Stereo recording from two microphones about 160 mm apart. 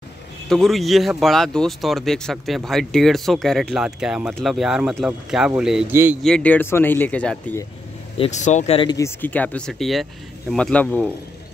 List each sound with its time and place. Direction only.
0.5 s speech: centre (ahead or behind)
5.9 s a man's voice: 15° right (ahead or behind)
6.2 s speech: 5° left (ahead or behind)
8.2 s speech: 45° left (ahead or behind)
8.7 s speech: 25° left (ahead or behind); by 11.1 s 10° left (ahead or behind)